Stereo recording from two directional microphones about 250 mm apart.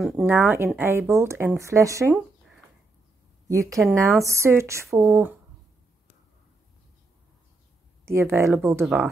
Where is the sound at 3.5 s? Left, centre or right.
Centre.